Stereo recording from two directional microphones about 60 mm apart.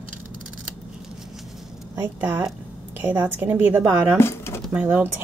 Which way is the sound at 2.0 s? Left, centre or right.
Right.